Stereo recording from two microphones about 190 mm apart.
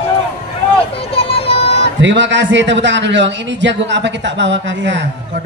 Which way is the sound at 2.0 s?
70° right (ahead or behind).